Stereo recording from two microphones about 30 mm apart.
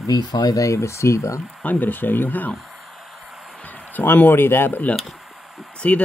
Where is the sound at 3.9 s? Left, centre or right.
Left.